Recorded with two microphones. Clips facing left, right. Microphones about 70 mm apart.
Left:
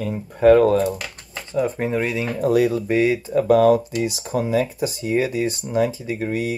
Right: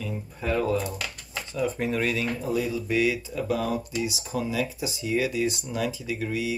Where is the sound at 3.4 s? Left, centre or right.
Left.